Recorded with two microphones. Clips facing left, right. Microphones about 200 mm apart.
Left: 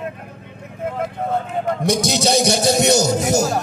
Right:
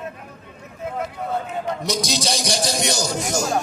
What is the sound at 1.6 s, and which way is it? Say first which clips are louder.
A man's voice: left 5 dB; 55° left (ahead or behind).